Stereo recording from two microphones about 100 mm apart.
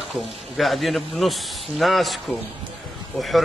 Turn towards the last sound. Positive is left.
turn(degrees=0)  # may be behind; listen again after turning